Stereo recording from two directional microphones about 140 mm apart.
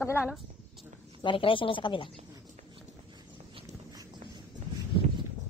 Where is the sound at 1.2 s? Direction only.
35° left (ahead or behind).